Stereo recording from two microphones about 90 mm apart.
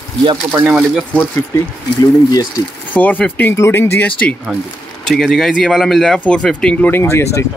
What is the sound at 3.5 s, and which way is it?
Speech, 30° left (ahead or behind).